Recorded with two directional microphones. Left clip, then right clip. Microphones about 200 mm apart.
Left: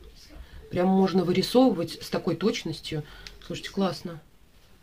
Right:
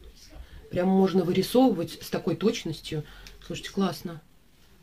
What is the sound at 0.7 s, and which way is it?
Speech, 15° left (ahead or behind).